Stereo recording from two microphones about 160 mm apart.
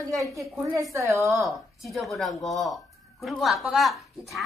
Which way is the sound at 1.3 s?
Centre (ahead or behind).